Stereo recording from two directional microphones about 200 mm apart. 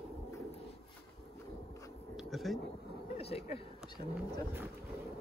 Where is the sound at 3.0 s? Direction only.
30° left (ahead or behind).